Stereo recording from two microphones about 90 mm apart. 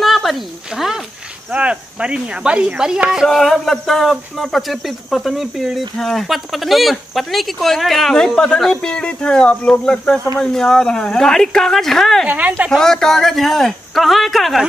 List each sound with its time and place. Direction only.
0.0 s a sound: centre (ahead or behind)
1.5 s speech: 15° right (ahead or behind); by 12.3 s 5° left (ahead or behind)
12.3 s a woman's voice: 20° right (ahead or behind)
12.6 s speech: 5° left (ahead or behind)